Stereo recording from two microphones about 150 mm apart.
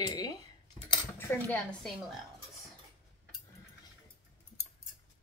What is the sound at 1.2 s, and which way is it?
Speech, 15° left (ahead or behind).